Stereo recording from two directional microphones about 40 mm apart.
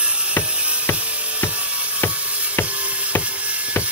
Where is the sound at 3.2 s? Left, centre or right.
Right.